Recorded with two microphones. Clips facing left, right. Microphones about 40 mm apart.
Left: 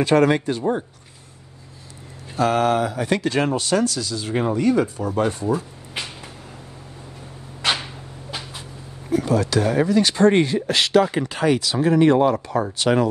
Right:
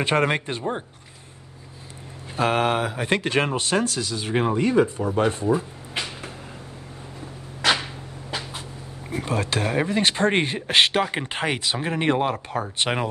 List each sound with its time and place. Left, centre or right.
0.0 s speech: right
2.3 s speech: right
9.1 s speech: right